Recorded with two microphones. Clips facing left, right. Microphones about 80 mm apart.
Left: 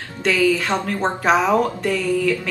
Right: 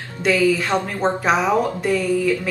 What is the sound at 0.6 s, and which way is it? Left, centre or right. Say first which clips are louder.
Speech: even; centre.